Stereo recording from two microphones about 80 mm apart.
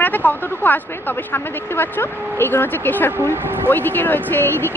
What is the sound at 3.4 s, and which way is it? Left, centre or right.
Speech, right.